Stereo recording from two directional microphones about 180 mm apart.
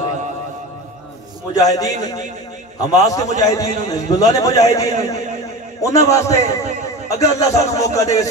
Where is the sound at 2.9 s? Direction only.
20° left (ahead or behind).